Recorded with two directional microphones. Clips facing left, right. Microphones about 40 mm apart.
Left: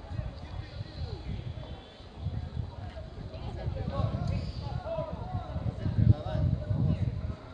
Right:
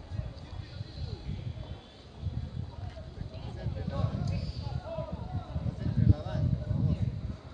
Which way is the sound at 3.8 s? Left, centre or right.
Left.